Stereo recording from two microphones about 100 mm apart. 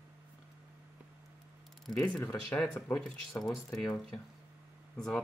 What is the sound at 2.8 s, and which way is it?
Speech, 10° left (ahead or behind).